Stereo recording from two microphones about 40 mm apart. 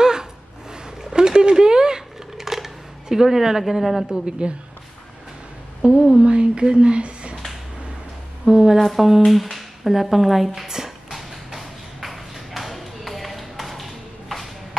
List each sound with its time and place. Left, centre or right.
0.0 s a sound: centre
4.3 s speech: right
5.8 s speech: right
8.5 s a woman's voice: centre
8.7 s speech: centre
11.1 s a sound: centre